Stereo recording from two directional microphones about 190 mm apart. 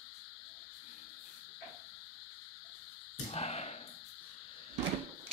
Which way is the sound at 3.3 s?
35° left (ahead or behind).